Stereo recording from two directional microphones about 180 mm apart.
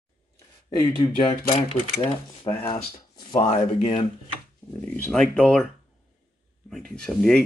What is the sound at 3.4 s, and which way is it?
Speech, 40° left (ahead or behind).